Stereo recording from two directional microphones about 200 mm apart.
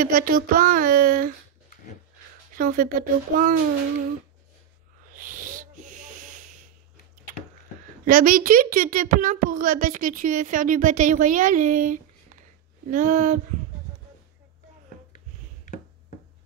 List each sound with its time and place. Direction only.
0.0 s speech: 45° right (ahead or behind)
2.5 s speech: 45° right (ahead or behind)
5.1 s wheeze: 45° right (ahead or behind)
8.0 s speech: 45° right (ahead or behind)
15.1 s a sound: 40° left (ahead or behind)